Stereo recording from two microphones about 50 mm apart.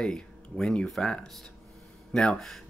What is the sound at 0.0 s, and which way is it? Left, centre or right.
Speech, centre.